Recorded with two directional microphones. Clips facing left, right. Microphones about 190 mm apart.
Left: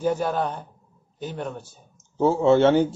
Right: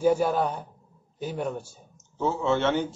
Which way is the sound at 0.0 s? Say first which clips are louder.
Right 1 dB; 10° right (ahead or behind).